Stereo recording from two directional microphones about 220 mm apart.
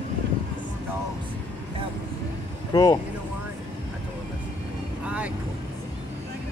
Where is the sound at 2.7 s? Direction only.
15° left (ahead or behind).